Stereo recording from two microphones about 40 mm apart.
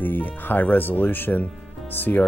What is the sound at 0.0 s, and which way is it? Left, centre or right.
Speech, left.